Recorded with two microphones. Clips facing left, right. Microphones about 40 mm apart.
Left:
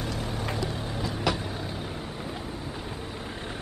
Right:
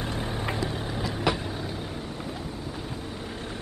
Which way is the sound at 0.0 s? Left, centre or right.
Right.